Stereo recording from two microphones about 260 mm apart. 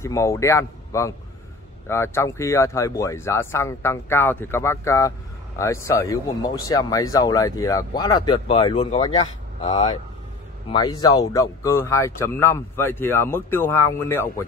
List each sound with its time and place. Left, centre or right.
0.0 s speech: centre